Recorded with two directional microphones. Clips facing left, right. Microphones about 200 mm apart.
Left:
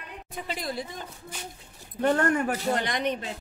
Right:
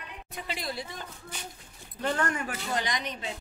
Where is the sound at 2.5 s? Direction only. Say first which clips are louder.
Left 6 dB; 40° left (ahead or behind).